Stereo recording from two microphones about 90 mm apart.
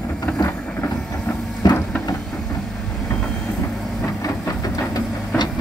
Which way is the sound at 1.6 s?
45° left (ahead or behind).